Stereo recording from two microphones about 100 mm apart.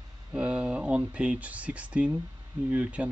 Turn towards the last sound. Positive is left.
turn(degrees=-15)  # may be behind; listen again after turning